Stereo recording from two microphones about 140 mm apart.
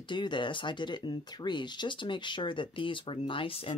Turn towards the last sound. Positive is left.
turn(degrees=40)  # may be behind; listen again after turning